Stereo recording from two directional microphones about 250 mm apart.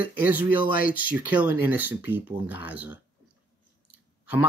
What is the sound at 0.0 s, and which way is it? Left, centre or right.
Speech, centre.